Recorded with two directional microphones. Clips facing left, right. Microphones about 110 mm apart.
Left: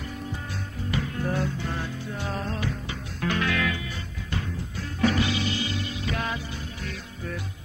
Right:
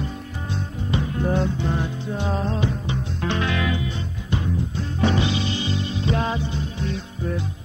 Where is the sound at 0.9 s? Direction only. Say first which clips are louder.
Right 5 dB; 25° right (ahead or behind).